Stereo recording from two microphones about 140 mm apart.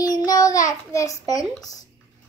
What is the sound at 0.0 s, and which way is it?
Child singing, 25° left (ahead or behind).